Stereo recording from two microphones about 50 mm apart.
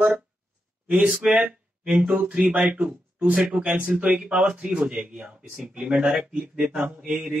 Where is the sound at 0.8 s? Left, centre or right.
Right.